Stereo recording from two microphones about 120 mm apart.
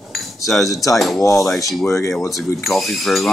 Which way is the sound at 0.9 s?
Centre (ahead or behind).